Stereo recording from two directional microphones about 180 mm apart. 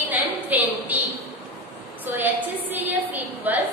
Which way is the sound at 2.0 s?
10° right (ahead or behind).